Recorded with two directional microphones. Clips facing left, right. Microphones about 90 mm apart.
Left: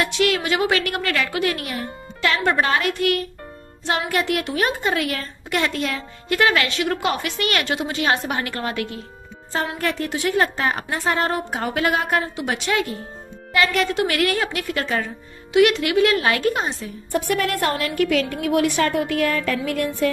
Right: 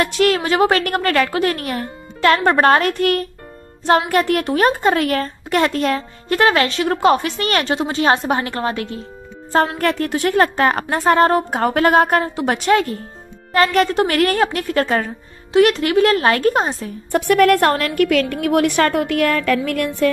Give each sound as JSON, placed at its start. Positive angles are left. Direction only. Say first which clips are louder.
{"t": 0.0, "sound": "a woman's voice", "louder": "right 4 dB", "side_deg": -45}
{"t": 9.5, "sound": "a woman's voice", "louder": "right 7 dB", "side_deg": -50}
{"t": 17.1, "sound": "a woman's voice", "louder": "right 9 dB", "side_deg": -60}